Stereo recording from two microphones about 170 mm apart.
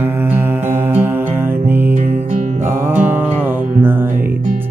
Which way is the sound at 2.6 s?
10° right (ahead or behind).